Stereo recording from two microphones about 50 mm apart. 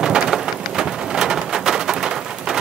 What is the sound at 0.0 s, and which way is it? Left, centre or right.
Rain, centre.